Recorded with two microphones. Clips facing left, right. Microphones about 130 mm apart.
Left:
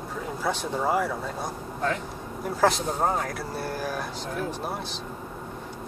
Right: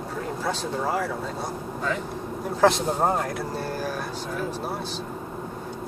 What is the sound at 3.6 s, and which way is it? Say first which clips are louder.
Speech: right 1 dB; 15° left (ahead or behind).